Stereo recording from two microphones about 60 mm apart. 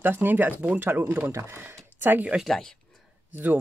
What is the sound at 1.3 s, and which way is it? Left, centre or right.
Speech, right.